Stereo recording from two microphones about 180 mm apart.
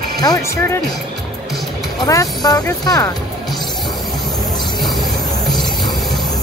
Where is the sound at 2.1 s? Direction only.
20° left (ahead or behind).